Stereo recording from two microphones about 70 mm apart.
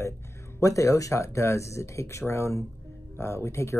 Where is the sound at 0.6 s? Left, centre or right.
Left.